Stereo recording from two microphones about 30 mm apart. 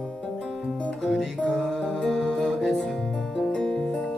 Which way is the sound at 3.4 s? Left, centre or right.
Left.